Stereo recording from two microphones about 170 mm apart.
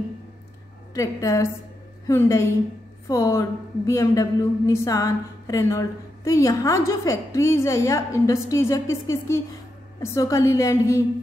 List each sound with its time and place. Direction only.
0.9 s a woman's voice: 15° left (ahead or behind)